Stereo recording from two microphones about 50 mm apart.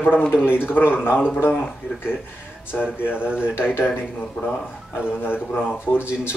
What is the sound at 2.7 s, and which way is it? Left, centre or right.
Speech, left.